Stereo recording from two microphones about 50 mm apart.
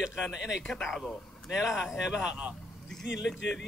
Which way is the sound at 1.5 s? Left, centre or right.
Centre.